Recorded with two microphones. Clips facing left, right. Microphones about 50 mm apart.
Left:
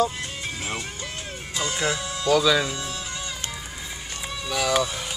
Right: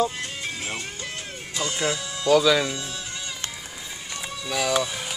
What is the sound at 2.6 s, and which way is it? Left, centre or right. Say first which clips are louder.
Speech: even; left.